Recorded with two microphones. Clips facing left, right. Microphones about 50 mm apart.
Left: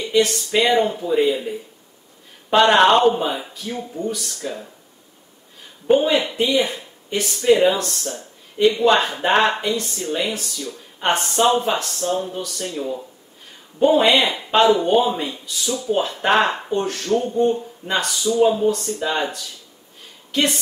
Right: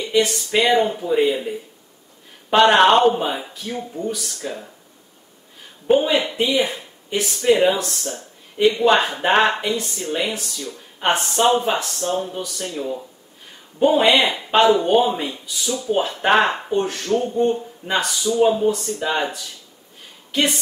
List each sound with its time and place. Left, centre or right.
0.1 s speech: centre
2.5 s speech: centre
5.9 s speech: centre
20.2 s a sound: centre